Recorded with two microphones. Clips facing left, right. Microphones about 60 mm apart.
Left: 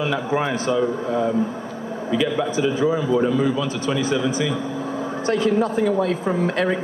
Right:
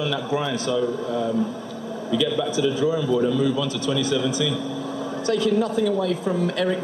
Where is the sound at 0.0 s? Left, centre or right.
Left.